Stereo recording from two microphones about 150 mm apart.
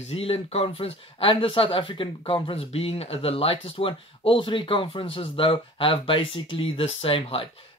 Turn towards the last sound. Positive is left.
turn(degrees=40)  # may be behind; listen again after turning